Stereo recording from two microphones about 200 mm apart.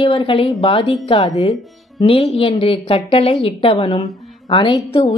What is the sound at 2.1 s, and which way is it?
A woman's voice, 30° left (ahead or behind).